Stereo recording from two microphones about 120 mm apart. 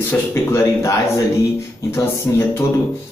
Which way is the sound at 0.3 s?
20° left (ahead or behind).